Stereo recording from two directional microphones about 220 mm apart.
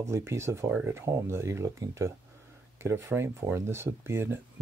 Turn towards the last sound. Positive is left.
turn(degrees=-10)  # may be behind; listen again after turning